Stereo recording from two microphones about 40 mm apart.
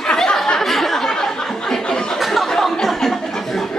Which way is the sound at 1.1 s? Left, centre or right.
Centre.